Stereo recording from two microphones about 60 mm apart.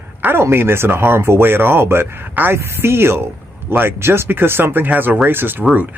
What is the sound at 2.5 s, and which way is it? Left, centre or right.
Speech, right.